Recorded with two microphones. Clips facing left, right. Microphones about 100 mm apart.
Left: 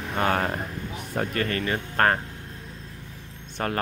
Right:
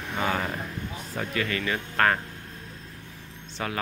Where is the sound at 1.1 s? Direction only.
45° left (ahead or behind).